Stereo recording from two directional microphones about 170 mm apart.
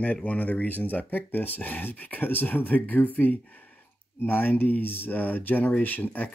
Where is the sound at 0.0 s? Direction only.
10° left (ahead or behind).